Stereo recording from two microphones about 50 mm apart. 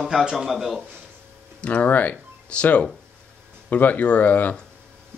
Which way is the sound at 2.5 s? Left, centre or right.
Left.